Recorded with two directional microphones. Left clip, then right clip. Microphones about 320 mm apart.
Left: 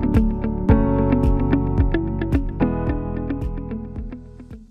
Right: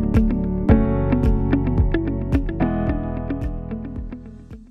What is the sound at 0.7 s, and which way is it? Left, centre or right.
Music, centre.